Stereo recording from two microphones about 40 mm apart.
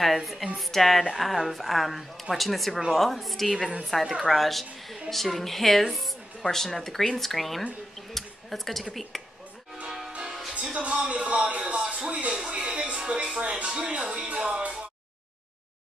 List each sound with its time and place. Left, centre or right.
0.0 s speech: centre
4.4 s speech: centre
8.1 s a sound: centre
10.5 s speech: right
11.1 s a sound: right
12.1 s music: right